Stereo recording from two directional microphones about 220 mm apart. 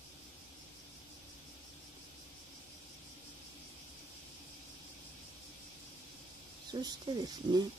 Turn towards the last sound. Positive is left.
turn(degrees=-20)  # may be behind; listen again after turning